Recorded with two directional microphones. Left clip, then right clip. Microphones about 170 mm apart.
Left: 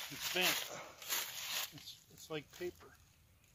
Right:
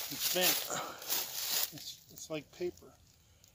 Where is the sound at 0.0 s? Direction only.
65° right (ahead or behind).